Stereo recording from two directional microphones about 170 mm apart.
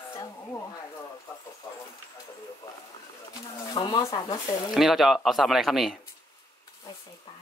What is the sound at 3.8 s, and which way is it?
Speech, 25° left (ahead or behind).